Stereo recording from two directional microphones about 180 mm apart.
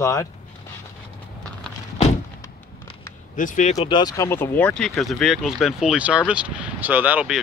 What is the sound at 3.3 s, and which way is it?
Speech, 45° left (ahead or behind).